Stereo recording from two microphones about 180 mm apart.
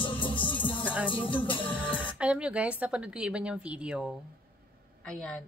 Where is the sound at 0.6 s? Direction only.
10° left (ahead or behind).